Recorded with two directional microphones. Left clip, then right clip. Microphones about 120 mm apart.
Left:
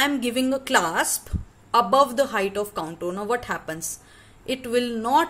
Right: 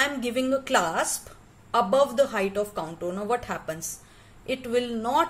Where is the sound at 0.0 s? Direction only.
40° left (ahead or behind).